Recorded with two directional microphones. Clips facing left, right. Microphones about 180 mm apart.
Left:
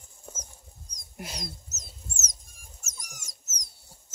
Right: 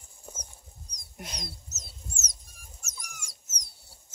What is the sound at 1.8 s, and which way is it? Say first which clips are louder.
Dog: even; 45° left (ahead or behind).